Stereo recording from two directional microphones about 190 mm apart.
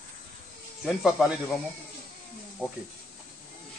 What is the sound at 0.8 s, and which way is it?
Speech, centre (ahead or behind).